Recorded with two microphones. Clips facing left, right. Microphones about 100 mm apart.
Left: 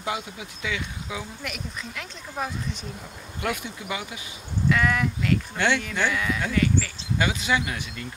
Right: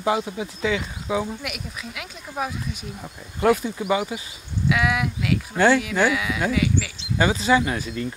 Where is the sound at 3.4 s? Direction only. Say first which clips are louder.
Right 10 dB; 35° right (ahead or behind).